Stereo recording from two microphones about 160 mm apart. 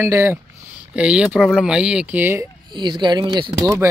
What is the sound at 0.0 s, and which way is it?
Speech, 15° right (ahead or behind).